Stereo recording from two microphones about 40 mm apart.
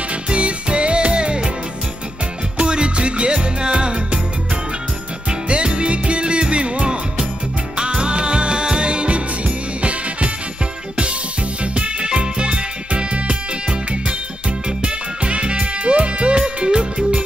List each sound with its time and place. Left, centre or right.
0.1 s music: right
2.5 s music: right
5.3 s music: right
11.6 s music: right